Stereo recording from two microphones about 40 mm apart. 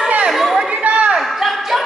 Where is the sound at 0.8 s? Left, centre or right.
Right.